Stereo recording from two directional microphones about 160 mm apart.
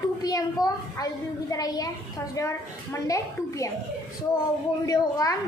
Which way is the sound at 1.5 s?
20° left (ahead or behind).